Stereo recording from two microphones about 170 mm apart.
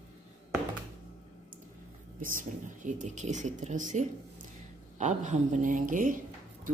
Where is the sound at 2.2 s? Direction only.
50° right (ahead or behind).